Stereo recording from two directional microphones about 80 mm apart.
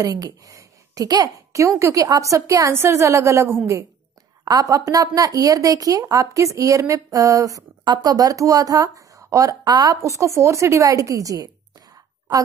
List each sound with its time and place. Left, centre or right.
0.0 s a woman's voice: right
4.5 s speech: right
7.8 s a woman's voice: right
9.7 s a woman's voice: right
10.0 s a woman's voice: right